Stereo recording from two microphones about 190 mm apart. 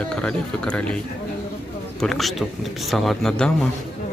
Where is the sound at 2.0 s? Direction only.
Centre (ahead or behind).